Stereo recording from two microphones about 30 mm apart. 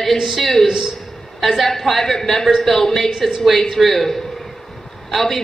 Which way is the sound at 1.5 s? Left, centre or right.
Centre.